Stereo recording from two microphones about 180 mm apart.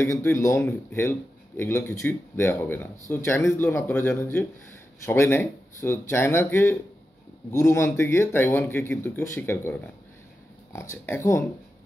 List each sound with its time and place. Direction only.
0.0 s speech: 15° left (ahead or behind)